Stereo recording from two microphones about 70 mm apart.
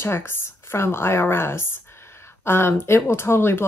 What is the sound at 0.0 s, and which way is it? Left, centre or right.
Speech, left.